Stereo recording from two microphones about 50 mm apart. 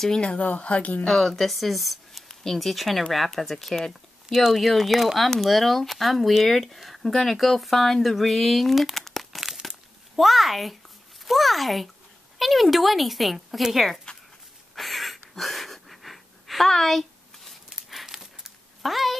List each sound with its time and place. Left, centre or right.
0.2 s a woman's voice: left
1.0 s speech: centre
4.3 s speech: centre
9.4 s crumpling: centre
11.2 s speech: centre
14.1 s a sound: centre
14.8 s gasp: centre
17.5 s a sound: centre